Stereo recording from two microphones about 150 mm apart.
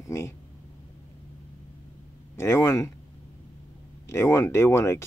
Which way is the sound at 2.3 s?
20° left (ahead or behind).